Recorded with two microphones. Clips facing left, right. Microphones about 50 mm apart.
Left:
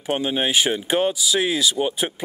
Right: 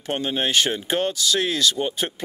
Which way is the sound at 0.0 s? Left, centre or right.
Centre.